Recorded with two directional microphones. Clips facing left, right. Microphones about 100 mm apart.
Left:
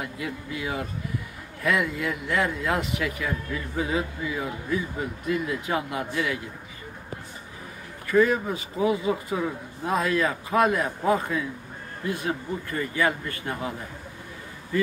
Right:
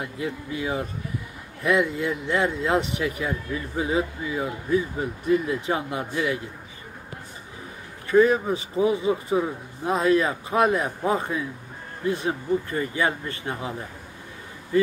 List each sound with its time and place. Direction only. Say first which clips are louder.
0.0 s speech: right 2 dB; 25° right (ahead or behind)
8.1 s speech: right 3 dB; 25° right (ahead or behind)